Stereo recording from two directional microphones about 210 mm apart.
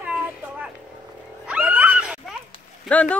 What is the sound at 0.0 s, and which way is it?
Vehicle, 5° right (ahead or behind).